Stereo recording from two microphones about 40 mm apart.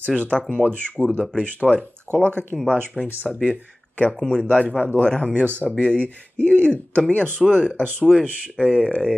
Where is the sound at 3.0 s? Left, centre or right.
Right.